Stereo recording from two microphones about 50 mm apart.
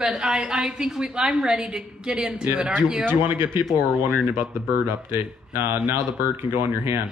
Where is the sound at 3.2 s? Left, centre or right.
Right.